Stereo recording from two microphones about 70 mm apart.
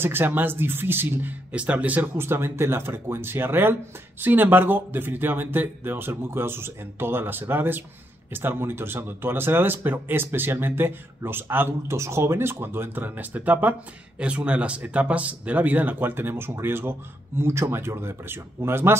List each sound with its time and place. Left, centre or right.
0.0 s speech: right
1.5 s speech: centre
2.1 s speech: right